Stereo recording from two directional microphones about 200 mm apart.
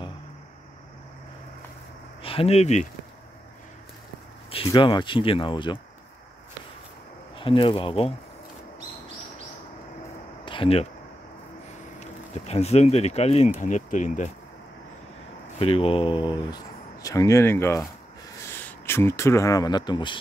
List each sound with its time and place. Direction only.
2.2 s speech: 30° left (ahead or behind)
4.5 s speech: 25° left (ahead or behind)
7.3 s speech: 25° left (ahead or behind)
10.4 s a sound: 25° left (ahead or behind)
12.0 s speech: 30° left (ahead or behind)
15.6 s speech: 30° left (ahead or behind)